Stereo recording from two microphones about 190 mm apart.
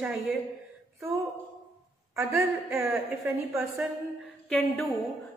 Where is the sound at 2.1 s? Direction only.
15° right (ahead or behind).